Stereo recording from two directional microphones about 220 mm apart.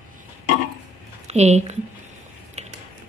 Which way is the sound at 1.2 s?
30° right (ahead or behind).